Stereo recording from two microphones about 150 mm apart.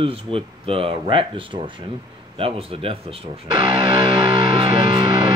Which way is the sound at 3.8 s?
30° right (ahead or behind).